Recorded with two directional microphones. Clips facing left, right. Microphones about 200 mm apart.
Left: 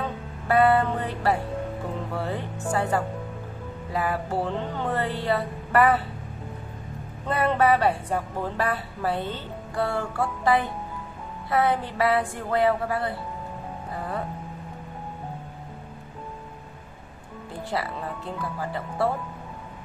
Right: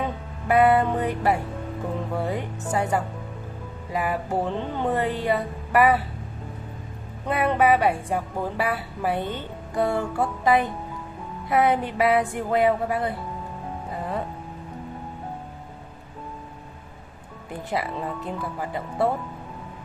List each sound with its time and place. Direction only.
0.0 s music: 15° right (ahead or behind)
2.1 s speech: 15° right (ahead or behind)
7.2 s speech: 15° right (ahead or behind)
17.6 s speech: 20° right (ahead or behind)